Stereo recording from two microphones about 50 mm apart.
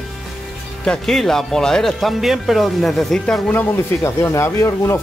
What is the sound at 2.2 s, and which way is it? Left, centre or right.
Speech, centre.